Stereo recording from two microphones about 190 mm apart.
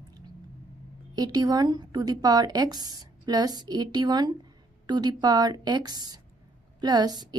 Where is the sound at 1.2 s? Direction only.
20° right (ahead or behind).